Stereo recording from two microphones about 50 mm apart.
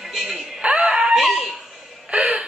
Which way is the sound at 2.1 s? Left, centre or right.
Right.